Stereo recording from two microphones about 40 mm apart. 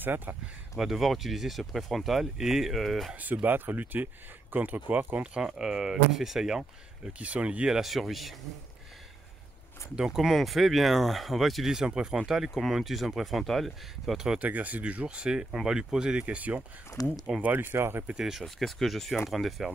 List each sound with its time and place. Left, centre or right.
0.0 s speech: right
0.7 s speech: centre
3.4 s speech: right
5.2 s speech: right
5.5 s speech: centre
7.2 s speech: right
7.8 s speech: centre
10.0 s speech: centre
11.6 s speech: centre
14.1 s speech: centre
14.4 s speech: right; by 16.2 s centre
16.2 s speech: right
17.6 s speech: right
18.4 s speech: centre